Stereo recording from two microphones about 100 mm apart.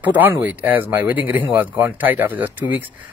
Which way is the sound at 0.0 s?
15° right (ahead or behind).